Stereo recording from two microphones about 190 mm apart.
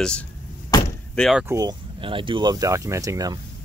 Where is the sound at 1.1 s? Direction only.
5° left (ahead or behind).